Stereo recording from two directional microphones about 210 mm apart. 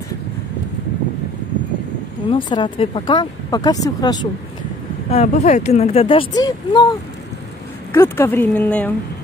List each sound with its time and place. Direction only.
2.2 s speech: 20° left (ahead or behind)
5.1 s speech: 35° left (ahead or behind); by 8.9 s 5° left (ahead or behind)